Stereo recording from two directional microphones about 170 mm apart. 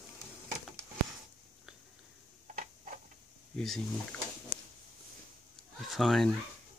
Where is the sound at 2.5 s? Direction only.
50° right (ahead or behind).